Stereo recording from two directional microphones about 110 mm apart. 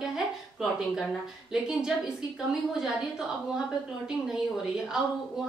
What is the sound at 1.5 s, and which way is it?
A woman's voice, 5° right (ahead or behind).